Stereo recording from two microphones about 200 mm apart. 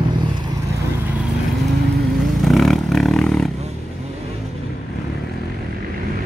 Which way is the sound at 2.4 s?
Centre (ahead or behind).